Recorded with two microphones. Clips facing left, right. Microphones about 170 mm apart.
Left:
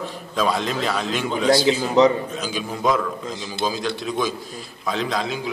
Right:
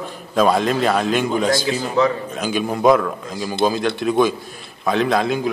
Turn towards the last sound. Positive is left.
turn(degrees=-55)  # may be behind; listen again after turning